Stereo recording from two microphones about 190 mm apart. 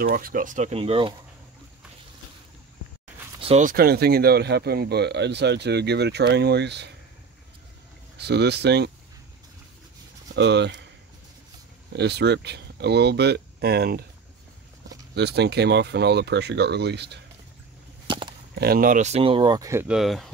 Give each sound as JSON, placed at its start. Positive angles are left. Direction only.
{"t": 0.0, "sound": "speech", "side_deg": -50}
{"t": 3.3, "sound": "a sound", "side_deg": -30}
{"t": 3.6, "sound": "speech", "side_deg": -55}
{"t": 8.2, "sound": "speech", "side_deg": -60}
{"t": 10.3, "sound": "speech", "side_deg": -65}
{"t": 11.9, "sound": "speech", "side_deg": -60}
{"t": 18.0, "sound": "a sound", "side_deg": -25}
{"t": 18.5, "sound": "speech", "side_deg": -55}